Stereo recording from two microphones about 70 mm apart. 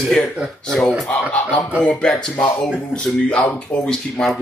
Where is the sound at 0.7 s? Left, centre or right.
Centre.